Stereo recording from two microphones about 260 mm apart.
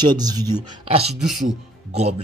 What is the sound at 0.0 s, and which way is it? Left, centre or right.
Speech, centre.